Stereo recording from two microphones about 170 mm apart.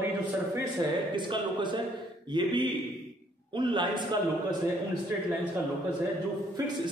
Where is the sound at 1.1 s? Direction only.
25° right (ahead or behind).